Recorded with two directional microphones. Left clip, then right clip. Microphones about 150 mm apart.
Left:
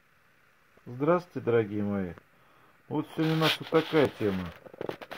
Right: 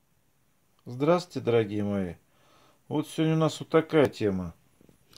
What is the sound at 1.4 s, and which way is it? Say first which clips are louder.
Speech: right 1 dB; 20° right (ahead or behind).